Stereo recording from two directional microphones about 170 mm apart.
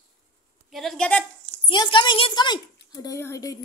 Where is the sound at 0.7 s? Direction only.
Centre (ahead or behind).